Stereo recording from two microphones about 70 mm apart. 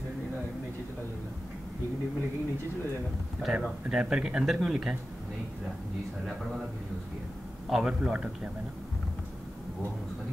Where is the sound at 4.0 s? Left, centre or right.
Centre.